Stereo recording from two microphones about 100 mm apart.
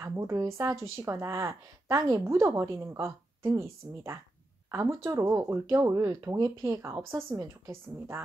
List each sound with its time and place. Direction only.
0.0 s a woman's voice: 30° right (ahead or behind)